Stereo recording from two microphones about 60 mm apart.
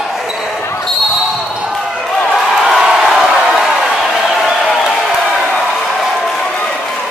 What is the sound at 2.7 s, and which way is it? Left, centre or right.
Crowd, centre.